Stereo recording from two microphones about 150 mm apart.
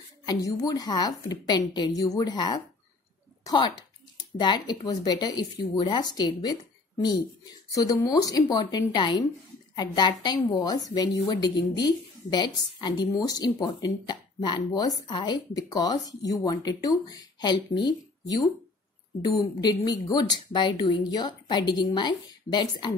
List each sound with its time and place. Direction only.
0.3 s a woman's voice: 25° left (ahead or behind)